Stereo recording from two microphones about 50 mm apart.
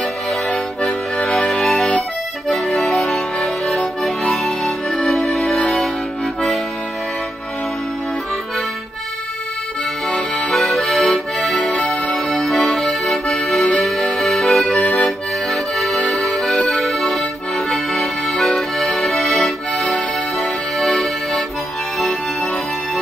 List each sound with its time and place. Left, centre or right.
0.8 s accordion: centre
10.0 s accordion: left
10.5 s accordion: centre
11.7 s music: left
12.3 s music: centre
12.6 s accordion: centre
14.8 s accordion: left
15.0 s accordion: centre
16.0 s accordion: left
16.3 s accordion: centre
21.9 s music: centre